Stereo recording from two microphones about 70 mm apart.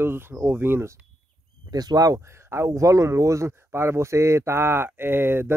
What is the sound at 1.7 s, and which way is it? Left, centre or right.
Speech, right.